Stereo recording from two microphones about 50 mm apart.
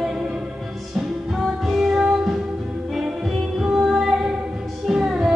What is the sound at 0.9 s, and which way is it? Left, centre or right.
Music, centre.